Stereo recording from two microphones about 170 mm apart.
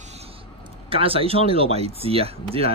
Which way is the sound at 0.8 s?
35° right (ahead or behind).